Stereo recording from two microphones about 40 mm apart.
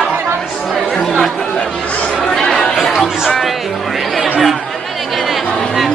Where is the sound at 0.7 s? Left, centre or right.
Centre.